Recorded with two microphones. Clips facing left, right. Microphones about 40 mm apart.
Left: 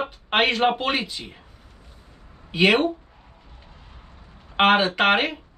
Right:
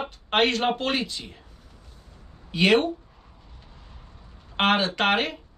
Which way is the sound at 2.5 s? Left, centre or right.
Centre.